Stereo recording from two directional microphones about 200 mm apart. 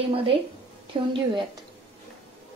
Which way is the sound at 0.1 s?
25° right (ahead or behind).